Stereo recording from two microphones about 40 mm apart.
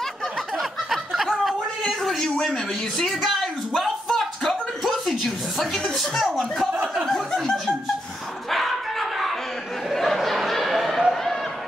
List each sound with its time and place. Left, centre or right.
0.6 s snicker: centre
1.8 s speech: centre
3.3 s a sound: centre
5.9 s speech: centre
7.1 s chuckle: centre
8.5 s bow-wow: centre
9.9 s a sound: centre